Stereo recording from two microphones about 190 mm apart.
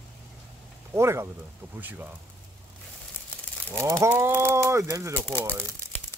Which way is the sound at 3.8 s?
15° right (ahead or behind).